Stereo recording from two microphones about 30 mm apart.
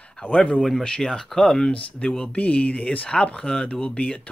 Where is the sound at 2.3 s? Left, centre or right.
Left.